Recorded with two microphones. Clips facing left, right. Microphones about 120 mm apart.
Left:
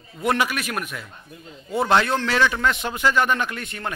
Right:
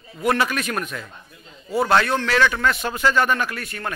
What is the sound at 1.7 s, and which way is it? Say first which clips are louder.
A man's voice: right 1 dB; 20° left (ahead or behind).